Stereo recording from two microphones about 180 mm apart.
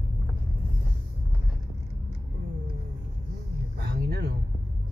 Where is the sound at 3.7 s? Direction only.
65° right (ahead or behind).